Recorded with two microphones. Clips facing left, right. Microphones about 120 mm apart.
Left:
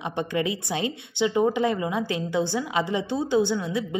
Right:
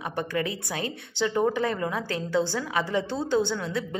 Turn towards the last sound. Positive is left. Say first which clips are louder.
# left 3 dB
turn(degrees=15)  # may be behind; listen again after turning